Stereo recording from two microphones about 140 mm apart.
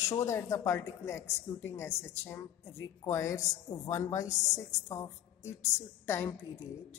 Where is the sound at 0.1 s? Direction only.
20° left (ahead or behind).